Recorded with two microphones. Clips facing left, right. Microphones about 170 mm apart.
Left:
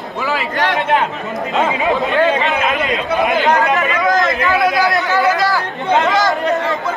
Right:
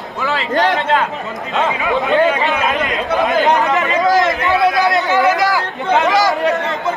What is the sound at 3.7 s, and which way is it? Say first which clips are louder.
Speech: right 1 dB; 20° right (ahead or behind).